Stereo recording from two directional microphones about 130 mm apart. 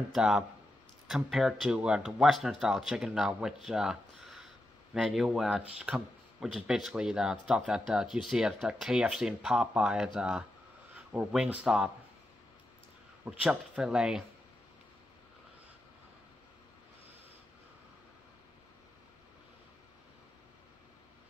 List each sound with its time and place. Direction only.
0.1 s speech: 5° right (ahead or behind)
13.2 s speech: 5° right (ahead or behind)